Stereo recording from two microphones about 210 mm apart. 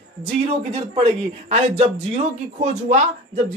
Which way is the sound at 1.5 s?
30° right (ahead or behind).